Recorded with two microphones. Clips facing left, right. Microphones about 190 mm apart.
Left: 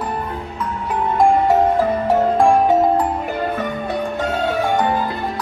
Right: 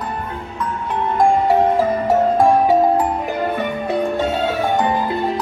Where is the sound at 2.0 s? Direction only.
5° right (ahead or behind).